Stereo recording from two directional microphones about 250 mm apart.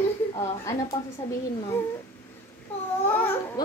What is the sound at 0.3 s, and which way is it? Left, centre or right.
A woman's voice, centre.